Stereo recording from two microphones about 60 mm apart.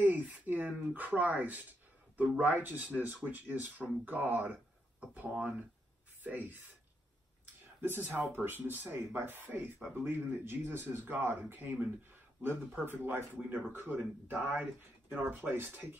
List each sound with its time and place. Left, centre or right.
0.0 s a sound: right
2.3 s speech: right
7.8 s speech: right
12.8 s speech: right